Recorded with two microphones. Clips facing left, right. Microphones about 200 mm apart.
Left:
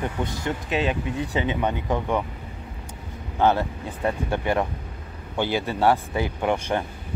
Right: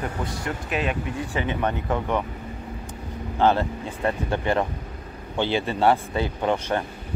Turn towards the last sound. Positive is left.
turn(degrees=15)  # may be behind; listen again after turning